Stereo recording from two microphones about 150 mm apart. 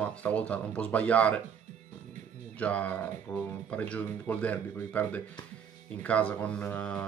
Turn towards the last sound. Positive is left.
turn(degrees=10)  # may be behind; listen again after turning